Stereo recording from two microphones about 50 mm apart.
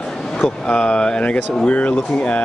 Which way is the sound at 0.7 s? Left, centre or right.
Centre.